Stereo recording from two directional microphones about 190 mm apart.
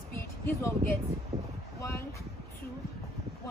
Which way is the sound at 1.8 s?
15° left (ahead or behind).